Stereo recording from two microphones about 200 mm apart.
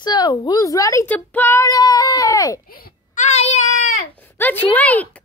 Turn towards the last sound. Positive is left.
turn(degrees=10)  # may be behind; listen again after turning